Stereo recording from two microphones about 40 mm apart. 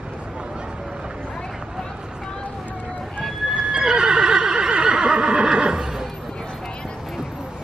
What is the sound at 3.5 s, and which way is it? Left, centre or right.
Neigh, centre.